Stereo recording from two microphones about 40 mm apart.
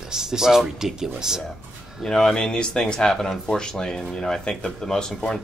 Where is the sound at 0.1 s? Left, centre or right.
Centre.